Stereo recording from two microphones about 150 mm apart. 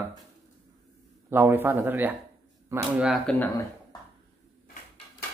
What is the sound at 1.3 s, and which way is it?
Speech, 15° right (ahead or behind).